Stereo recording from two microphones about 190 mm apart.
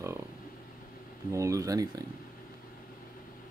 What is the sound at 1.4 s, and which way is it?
Speech, 15° right (ahead or behind).